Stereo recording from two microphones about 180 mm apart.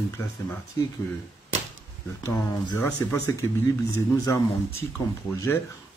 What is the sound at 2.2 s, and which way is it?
Speech, 25° left (ahead or behind).